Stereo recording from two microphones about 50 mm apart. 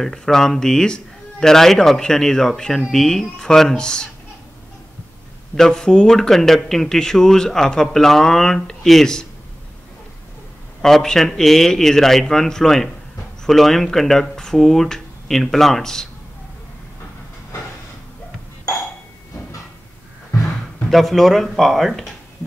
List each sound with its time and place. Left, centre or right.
0.0 s speech: centre
5.6 s speech: centre
10.8 s speech: centre
20.9 s speech: centre